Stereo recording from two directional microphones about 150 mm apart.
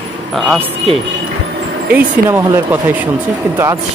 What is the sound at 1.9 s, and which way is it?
Speech, 10° right (ahead or behind).